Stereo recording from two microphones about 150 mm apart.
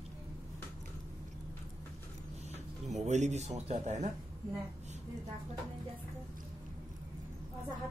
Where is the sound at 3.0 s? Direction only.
50° right (ahead or behind).